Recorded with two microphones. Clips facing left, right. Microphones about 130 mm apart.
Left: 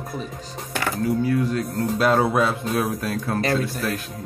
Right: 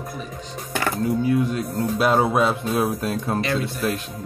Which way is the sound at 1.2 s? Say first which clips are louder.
Right 1 dB; 20° right (ahead or behind).